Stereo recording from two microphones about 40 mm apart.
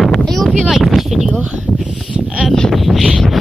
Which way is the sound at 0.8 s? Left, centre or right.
Centre.